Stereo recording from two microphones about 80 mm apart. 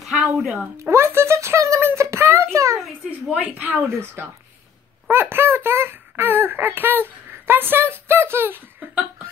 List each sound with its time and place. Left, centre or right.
0.0 s speech: centre
0.7 s a sound: right
3.1 s a woman's voice: centre
3.7 s a woman's voice: right